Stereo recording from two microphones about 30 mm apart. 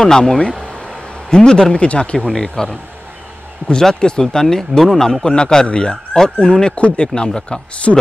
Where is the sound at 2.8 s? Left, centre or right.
Right.